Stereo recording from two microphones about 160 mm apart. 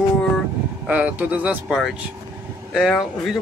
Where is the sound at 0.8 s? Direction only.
10° right (ahead or behind).